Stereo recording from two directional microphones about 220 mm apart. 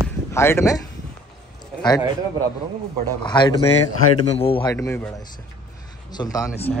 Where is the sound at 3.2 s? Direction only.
20° left (ahead or behind).